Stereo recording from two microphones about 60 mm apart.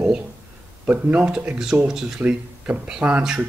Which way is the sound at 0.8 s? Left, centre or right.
Right.